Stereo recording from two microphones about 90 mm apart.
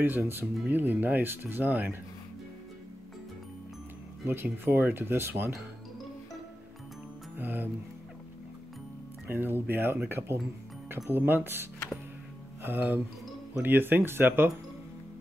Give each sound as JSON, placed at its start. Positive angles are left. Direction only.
{"t": 0.2, "sound": "speech", "side_deg": -25}
{"t": 4.2, "sound": "speech", "side_deg": -25}
{"t": 7.3, "sound": "speech", "side_deg": -20}
{"t": 9.3, "sound": "speech", "side_deg": -25}